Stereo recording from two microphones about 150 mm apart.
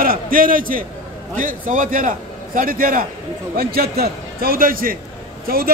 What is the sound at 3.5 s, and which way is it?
A man's voice, 85° right.